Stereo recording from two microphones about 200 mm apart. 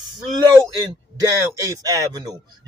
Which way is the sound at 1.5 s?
15° right (ahead or behind).